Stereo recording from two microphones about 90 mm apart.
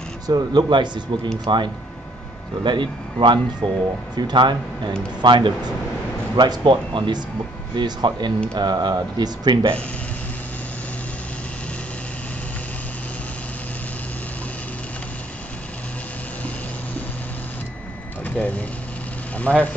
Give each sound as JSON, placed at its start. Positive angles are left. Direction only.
{"t": 0.3, "sound": "speech", "side_deg": -55}
{"t": 18.2, "sound": "vehicle", "side_deg": 15}
{"t": 19.3, "sound": "speech", "side_deg": 15}